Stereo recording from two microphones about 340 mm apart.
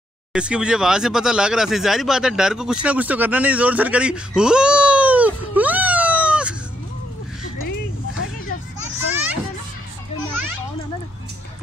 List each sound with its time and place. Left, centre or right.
0.3 s speech: centre